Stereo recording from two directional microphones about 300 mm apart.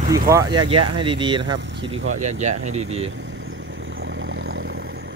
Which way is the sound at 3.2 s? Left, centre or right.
Right.